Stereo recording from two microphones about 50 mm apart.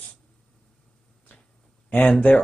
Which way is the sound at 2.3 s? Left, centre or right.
Left.